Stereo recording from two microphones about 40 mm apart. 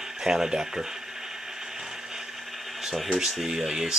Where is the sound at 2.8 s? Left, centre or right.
Centre.